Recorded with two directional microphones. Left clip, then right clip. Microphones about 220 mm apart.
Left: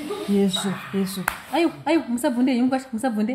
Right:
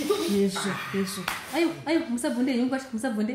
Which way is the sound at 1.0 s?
35° left (ahead or behind).